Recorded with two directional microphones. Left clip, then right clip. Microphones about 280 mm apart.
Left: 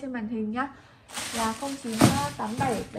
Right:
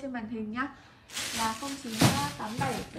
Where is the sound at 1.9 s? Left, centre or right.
Left.